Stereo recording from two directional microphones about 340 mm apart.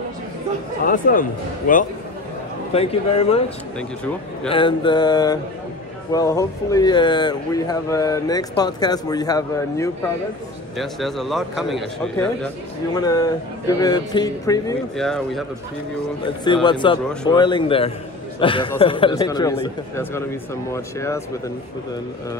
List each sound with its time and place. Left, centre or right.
0.8 s speech: left
2.7 s speech: centre
12.9 s speech: centre
16.2 s speech: centre